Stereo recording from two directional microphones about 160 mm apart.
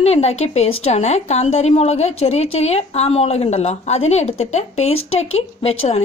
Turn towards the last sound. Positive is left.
turn(degrees=40)  # may be behind; listen again after turning